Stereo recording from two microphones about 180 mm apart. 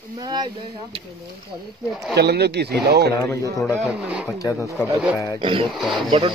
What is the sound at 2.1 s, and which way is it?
Speech, 65° right (ahead or behind).